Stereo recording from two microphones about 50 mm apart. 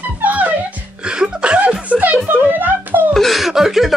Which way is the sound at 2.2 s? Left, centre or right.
Right.